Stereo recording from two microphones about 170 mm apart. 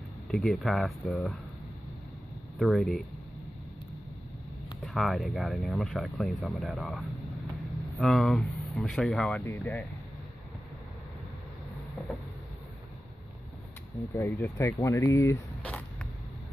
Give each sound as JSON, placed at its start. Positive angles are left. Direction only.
{"t": 0.3, "sound": "speech", "side_deg": 0}
{"t": 2.6, "sound": "speech", "side_deg": 0}
{"t": 4.8, "sound": "speech", "side_deg": 0}
{"t": 14.1, "sound": "speech", "side_deg": 10}